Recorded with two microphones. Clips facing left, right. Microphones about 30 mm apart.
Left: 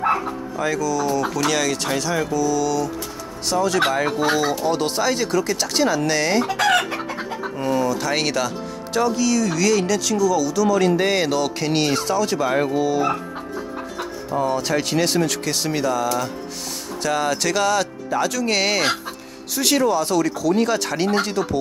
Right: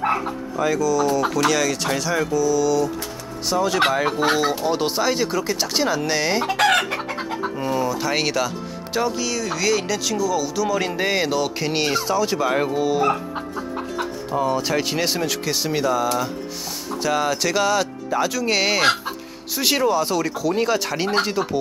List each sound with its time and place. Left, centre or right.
0.0 s dog: centre
1.5 s speech: centre
6.4 s chicken: right
7.5 s speech: centre